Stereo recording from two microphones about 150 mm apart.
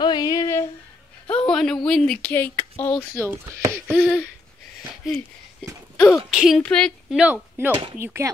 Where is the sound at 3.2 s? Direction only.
20° right (ahead or behind).